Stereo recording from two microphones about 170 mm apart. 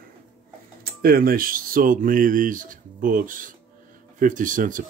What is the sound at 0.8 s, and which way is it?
Speech, 60° right (ahead or behind).